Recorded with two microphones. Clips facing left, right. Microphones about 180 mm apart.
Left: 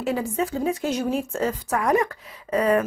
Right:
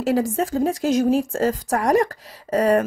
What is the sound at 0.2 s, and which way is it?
Speech, 45° right (ahead or behind).